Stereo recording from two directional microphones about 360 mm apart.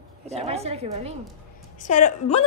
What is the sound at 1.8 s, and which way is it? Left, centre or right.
Speech, left.